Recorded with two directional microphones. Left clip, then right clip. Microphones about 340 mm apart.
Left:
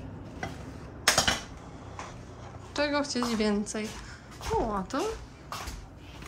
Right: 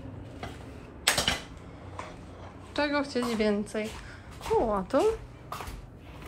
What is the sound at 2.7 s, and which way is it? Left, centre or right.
A woman's voice, centre.